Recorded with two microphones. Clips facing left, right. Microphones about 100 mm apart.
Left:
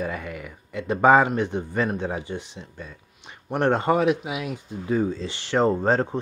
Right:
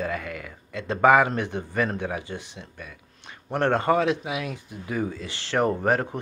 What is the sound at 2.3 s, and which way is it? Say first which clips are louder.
Speech: left 3 dB; 20° right (ahead or behind).